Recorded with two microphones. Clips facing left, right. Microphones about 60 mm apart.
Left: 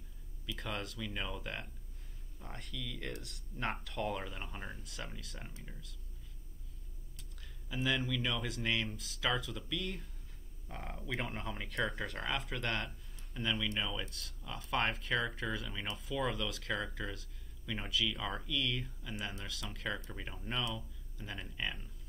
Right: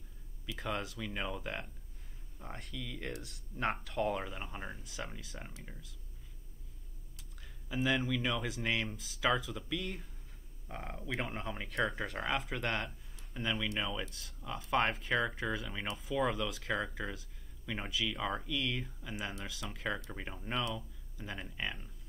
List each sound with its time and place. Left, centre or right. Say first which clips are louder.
0.6 s speech: right 3 dB; centre
7.6 s speech: right 3 dB; centre
14.0 s speech: right 3 dB; centre